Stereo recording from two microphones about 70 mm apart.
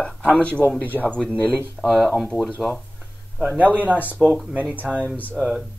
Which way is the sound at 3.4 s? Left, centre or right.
Right.